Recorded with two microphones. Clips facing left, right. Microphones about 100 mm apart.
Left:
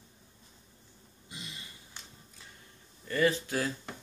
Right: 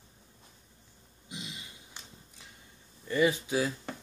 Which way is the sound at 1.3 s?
20° right (ahead or behind).